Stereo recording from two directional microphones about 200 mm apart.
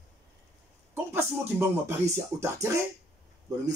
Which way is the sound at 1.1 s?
10° right (ahead or behind).